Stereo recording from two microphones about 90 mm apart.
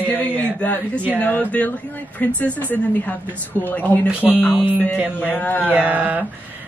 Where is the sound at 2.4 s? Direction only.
20° left (ahead or behind).